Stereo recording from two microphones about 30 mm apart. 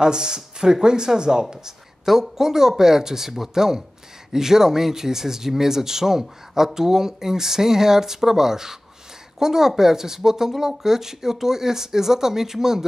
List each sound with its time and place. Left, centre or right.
0.0 s speech: right